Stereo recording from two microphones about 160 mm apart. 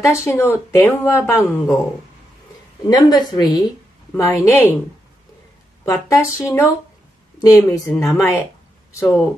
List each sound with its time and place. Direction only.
0.0 s speech: 20° left (ahead or behind)
2.9 s speech: 25° left (ahead or behind)
4.2 s speech: 15° left (ahead or behind)
5.9 s speech: 20° left (ahead or behind)